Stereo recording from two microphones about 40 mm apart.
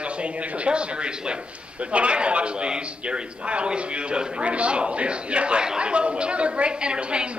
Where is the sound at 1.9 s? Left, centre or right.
Right.